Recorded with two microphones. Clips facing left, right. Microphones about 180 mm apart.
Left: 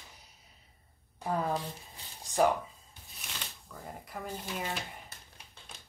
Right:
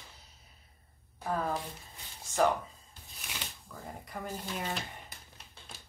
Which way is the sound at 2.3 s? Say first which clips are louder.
Left 1 dB; 15° left (ahead or behind).